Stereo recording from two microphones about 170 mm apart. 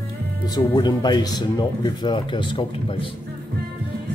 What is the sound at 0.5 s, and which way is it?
Speech, 25° left (ahead or behind).